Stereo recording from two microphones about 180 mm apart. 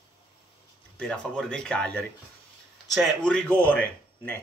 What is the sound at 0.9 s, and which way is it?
Speech, 5° left (ahead or behind).